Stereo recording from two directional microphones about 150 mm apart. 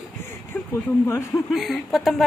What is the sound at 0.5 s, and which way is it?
Speech, 10° left (ahead or behind).